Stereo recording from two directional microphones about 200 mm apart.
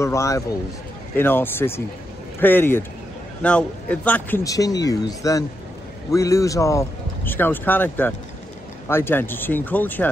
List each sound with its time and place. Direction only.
0.0 s speech: 15° left (ahead or behind)